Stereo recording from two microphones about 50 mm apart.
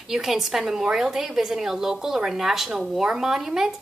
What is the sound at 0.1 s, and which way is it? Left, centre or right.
Speech, centre.